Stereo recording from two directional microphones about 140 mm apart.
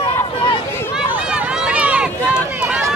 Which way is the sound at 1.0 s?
5° right (ahead or behind).